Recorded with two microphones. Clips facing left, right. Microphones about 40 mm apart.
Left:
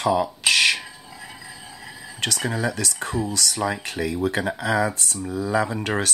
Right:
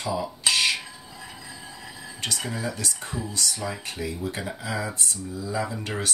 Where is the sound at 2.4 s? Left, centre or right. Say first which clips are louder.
Left 7 dB; left.